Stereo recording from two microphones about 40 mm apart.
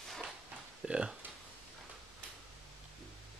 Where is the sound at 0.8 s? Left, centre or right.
Centre.